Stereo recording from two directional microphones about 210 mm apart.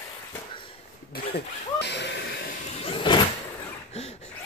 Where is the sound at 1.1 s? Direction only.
50° left (ahead or behind).